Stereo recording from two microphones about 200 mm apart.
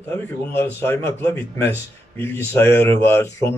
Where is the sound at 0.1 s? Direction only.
10° left (ahead or behind).